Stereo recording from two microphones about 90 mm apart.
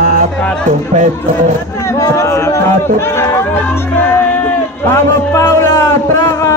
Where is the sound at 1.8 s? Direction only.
35° left (ahead or behind).